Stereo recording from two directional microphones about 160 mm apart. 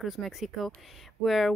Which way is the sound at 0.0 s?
Centre (ahead or behind).